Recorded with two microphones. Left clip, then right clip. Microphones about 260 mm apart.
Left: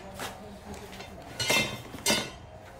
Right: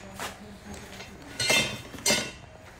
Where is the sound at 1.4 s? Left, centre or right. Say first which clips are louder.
Right 2 dB; left.